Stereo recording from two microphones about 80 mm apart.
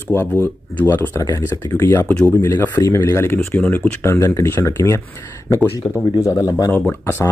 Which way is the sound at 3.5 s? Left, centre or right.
Left.